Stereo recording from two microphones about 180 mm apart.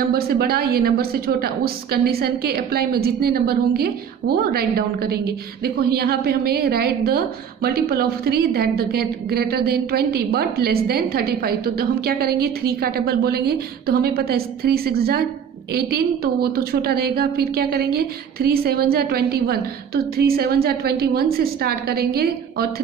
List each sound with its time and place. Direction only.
0.3 s a woman's voice: 60° right (ahead or behind)